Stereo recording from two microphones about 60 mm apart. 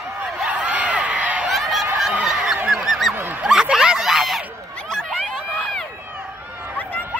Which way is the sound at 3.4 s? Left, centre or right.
Centre.